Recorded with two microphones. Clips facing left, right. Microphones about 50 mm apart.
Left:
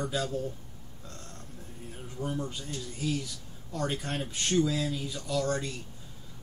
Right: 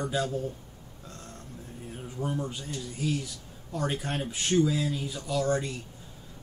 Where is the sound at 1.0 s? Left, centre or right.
Centre.